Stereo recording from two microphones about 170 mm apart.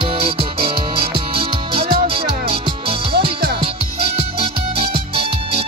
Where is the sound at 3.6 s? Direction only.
35° right (ahead or behind).